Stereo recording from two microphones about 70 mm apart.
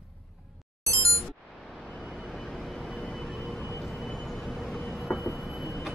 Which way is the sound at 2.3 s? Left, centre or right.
Centre.